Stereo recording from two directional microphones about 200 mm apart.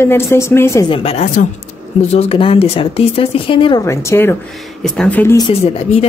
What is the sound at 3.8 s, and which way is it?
Speech, 15° left (ahead or behind).